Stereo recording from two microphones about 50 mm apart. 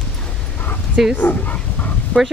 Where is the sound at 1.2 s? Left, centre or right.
Left.